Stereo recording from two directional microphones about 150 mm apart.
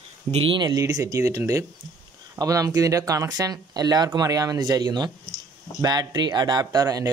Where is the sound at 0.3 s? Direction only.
40° right (ahead or behind).